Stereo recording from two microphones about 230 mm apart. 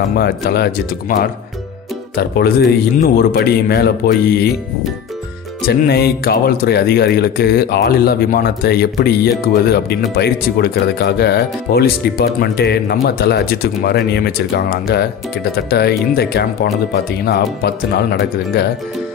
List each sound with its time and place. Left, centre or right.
0.1 s speech: left
5.7 s speech: left